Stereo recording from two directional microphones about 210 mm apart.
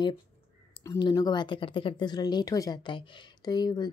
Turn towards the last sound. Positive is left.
turn(degrees=20)  # may be behind; listen again after turning